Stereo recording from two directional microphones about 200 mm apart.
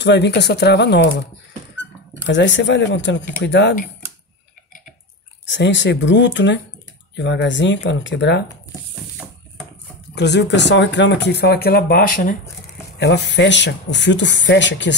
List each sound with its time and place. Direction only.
0.0 s speech: 60° left (ahead or behind)
2.2 s speech: 65° left (ahead or behind)
5.4 s speech: 65° left (ahead or behind)
10.1 s speech: 60° left (ahead or behind)
13.0 s speech: 60° left (ahead or behind)